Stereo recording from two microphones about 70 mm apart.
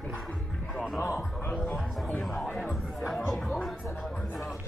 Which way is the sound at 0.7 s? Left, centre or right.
Centre.